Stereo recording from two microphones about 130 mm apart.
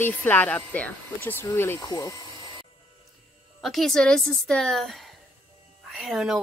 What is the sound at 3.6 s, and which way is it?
Speech, centre (ahead or behind).